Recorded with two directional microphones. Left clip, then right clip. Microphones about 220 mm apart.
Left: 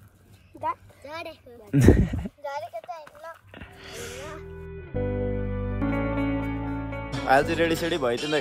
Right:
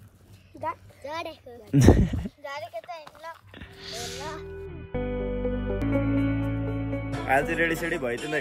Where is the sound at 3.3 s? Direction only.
5° right (ahead or behind).